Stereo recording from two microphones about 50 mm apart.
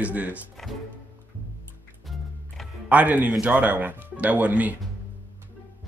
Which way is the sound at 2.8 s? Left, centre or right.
Right.